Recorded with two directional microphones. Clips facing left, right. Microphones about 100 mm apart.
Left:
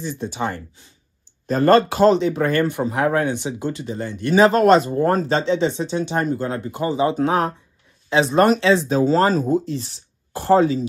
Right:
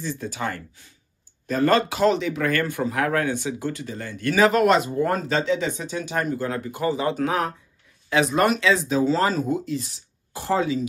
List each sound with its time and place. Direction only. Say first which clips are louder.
0.0 s a man's voice: left 3 dB; 20° left (ahead or behind)
1.5 s a man's voice: left 5 dB; 40° left (ahead or behind)